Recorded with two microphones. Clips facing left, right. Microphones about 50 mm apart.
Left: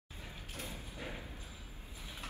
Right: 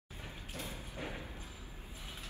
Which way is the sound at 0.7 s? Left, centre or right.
Right.